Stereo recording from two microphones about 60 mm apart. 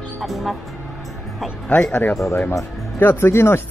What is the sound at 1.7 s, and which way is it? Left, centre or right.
Speech, centre.